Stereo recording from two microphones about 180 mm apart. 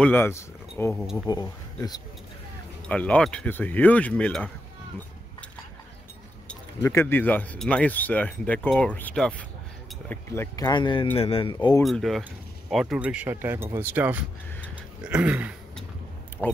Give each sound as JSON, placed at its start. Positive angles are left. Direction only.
{"t": 0.0, "sound": "speech", "side_deg": 10}
{"t": 2.9, "sound": "speech", "side_deg": 5}
{"t": 6.8, "sound": "speech", "side_deg": 15}
{"t": 11.8, "sound": "speech", "side_deg": 0}
{"t": 16.4, "sound": "speech", "side_deg": 5}